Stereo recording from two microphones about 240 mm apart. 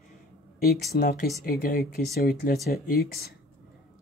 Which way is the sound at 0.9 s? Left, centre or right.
Left.